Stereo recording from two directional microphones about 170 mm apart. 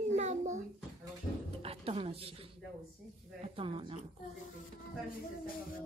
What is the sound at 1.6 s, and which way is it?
Speech, 35° right (ahead or behind).